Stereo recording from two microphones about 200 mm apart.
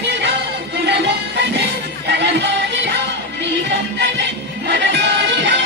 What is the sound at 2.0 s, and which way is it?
Music, 60° right (ahead or behind).